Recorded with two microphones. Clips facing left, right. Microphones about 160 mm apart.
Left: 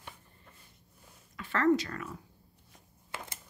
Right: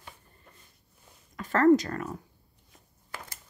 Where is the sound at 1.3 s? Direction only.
45° right (ahead or behind).